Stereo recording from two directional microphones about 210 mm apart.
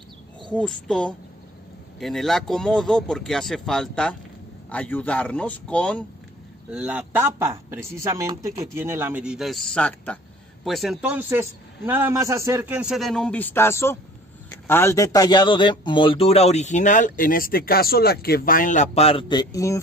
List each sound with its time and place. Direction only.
0.5 s a man's voice: 5° left (ahead or behind)
6.7 s a man's voice: 5° right (ahead or behind); by 19.8 s 15° left (ahead or behind)